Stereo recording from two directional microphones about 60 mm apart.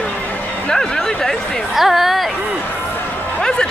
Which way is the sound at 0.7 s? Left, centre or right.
Centre.